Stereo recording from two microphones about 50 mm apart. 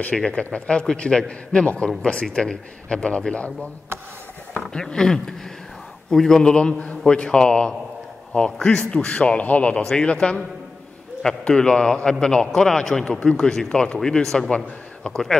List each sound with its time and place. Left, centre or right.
0.1 s a man's voice: centre
4.6 s a man's voice: centre; by 9.8 s left
9.8 s a man's voice: centre
15.0 s a man's voice: left